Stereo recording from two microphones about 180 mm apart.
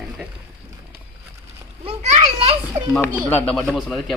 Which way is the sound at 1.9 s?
40° right (ahead or behind).